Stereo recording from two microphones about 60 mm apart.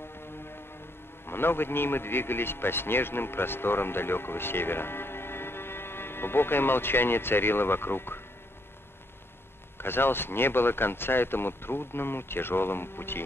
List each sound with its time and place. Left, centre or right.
1.2 s a man's voice: left
9.8 s speech: left